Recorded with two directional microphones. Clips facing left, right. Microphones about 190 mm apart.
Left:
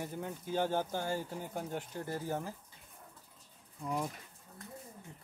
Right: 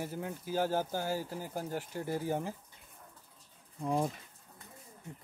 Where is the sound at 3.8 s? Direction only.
25° right (ahead or behind).